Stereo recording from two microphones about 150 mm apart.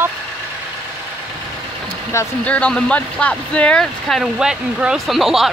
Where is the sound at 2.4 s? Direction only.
10° left (ahead or behind).